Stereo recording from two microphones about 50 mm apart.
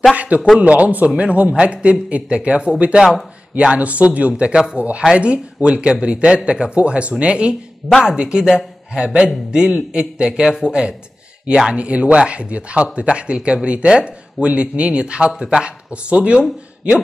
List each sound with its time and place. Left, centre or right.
0.1 s speech: right
7.8 s speech: centre
8.2 s a man's voice: centre
15.9 s speech: right